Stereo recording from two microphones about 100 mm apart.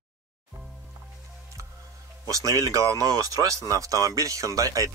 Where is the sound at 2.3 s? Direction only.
35° right (ahead or behind).